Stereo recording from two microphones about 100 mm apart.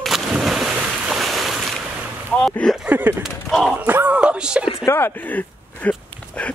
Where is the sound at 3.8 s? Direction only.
15° right (ahead or behind).